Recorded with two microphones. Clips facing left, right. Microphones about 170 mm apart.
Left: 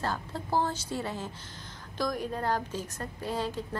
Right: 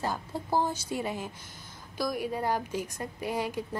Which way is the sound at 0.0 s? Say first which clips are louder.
Right 1 dB; 15° right (ahead or behind).